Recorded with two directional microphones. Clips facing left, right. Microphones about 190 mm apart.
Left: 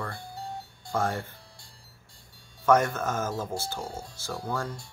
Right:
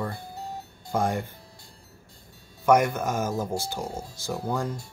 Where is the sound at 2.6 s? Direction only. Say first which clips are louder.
Right 2 dB; 15° right (ahead or behind).